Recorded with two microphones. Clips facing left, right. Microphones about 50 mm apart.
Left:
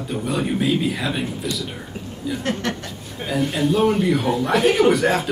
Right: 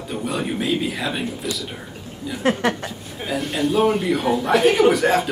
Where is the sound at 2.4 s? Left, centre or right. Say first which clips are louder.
Right 8 dB; centre.